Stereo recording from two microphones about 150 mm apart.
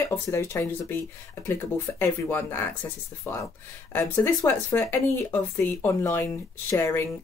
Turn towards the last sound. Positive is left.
turn(degrees=15)  # may be behind; listen again after turning